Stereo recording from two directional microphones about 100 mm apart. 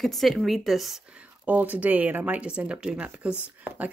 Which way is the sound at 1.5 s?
15° right (ahead or behind).